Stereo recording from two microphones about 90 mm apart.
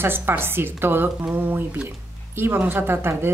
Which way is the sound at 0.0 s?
25° right (ahead or behind).